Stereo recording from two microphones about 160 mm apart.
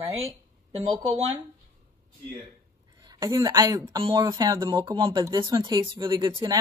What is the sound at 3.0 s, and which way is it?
Speech, 25° right (ahead or behind).